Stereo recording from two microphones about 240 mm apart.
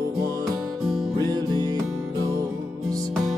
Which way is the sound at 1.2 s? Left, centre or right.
Centre.